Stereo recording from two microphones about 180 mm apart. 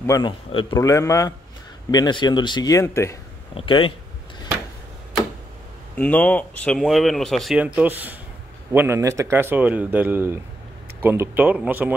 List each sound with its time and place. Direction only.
0.0 s speech: 20° left (ahead or behind)
0.5 s speech: 30° left (ahead or behind)
0.7 s a man's voice: 15° left (ahead or behind)
3.5 s speech: 30° left (ahead or behind)
5.9 s speech: 10° left (ahead or behind); by 11.9 s 10° right (ahead or behind)